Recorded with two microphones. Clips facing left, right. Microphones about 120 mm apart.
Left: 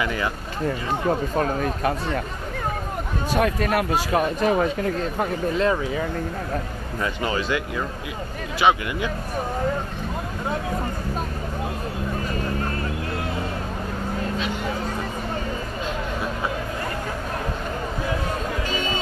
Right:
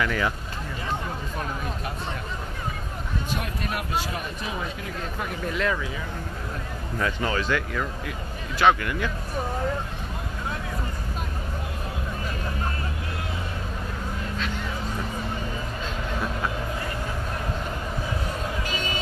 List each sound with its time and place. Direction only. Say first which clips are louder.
0.0 s speech: even; 5° left (ahead or behind)
1.3 s speech: left 8 dB; 55° left (ahead or behind)
3.3 s speech: left 13 dB; 75° left (ahead or behind)
4.1 s speech: left 12 dB; 60° left (ahead or behind)
5.2 s speech: left 5 dB; 30° left (ahead or behind)
7.0 s speech: left 1 dB; 5° left (ahead or behind)